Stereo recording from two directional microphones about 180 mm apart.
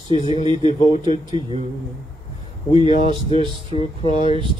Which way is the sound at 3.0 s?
35° left (ahead or behind).